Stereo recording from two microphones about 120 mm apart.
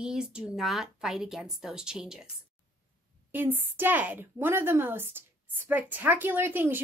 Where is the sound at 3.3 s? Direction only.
15° right (ahead or behind).